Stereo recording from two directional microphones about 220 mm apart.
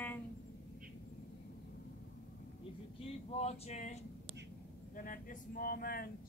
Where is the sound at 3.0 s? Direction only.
25° left (ahead or behind).